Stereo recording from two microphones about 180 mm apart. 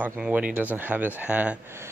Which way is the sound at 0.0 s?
10° right (ahead or behind).